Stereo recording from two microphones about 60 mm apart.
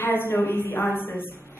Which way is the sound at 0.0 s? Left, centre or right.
Left.